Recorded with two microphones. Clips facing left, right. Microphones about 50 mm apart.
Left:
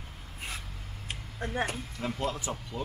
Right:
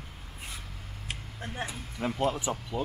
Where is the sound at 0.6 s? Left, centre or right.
Centre.